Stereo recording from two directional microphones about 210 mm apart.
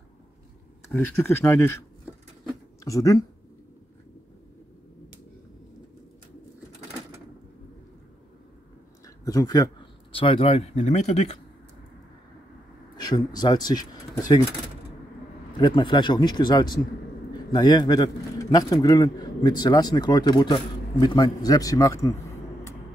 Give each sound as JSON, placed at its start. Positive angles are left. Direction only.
{"t": 0.8, "sound": "speech", "side_deg": 10}
{"t": 2.4, "sound": "a sound", "side_deg": 15}
{"t": 9.0, "sound": "speech", "side_deg": 15}
{"t": 12.9, "sound": "speech", "side_deg": 20}
{"t": 15.5, "sound": "speech", "side_deg": 20}